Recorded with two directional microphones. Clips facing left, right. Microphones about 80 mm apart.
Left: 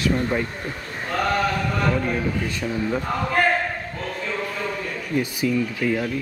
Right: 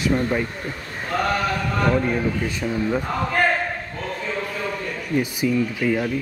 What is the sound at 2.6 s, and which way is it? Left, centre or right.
Speech, centre.